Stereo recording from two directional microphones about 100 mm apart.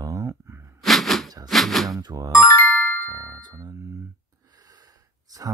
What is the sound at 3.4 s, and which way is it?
Music, 45° right (ahead or behind).